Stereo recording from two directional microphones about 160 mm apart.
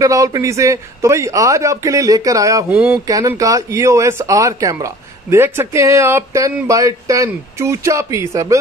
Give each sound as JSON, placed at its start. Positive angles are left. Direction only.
{"t": 0.0, "sound": "speech", "side_deg": -20}
{"t": 2.7, "sound": "speech", "side_deg": -5}
{"t": 3.1, "sound": "speech", "side_deg": -20}